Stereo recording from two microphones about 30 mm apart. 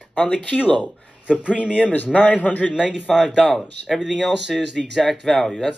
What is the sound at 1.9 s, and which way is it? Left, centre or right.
Speech, left.